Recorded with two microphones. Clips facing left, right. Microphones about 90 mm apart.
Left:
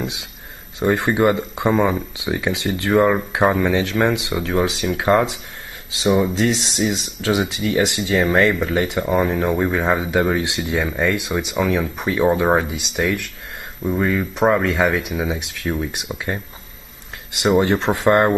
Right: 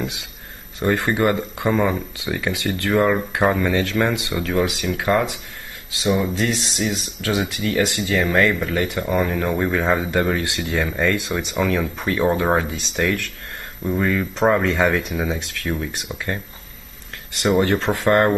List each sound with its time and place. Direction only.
0.0 s speech: 20° left (ahead or behind)
17.5 s speech: 15° left (ahead or behind)